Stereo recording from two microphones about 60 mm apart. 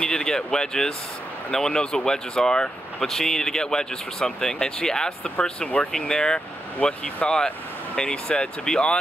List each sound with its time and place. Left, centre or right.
0.0 s speech: centre